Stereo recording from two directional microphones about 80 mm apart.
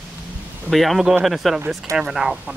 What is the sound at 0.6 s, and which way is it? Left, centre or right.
Speech, centre.